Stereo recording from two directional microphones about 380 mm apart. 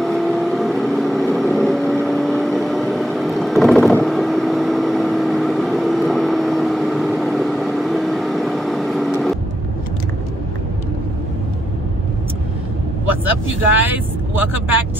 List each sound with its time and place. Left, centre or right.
0.0 s vehicle: centre
13.7 s vehicle: centre